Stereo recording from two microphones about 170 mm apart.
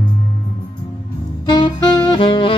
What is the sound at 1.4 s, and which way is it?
Saxophone, 30° left (ahead or behind).